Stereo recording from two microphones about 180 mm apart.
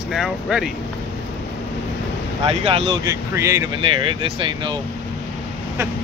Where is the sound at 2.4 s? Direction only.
30° right (ahead or behind).